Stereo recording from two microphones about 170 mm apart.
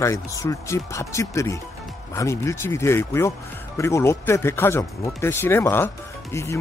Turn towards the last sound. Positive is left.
turn(degrees=15)  # may be behind; listen again after turning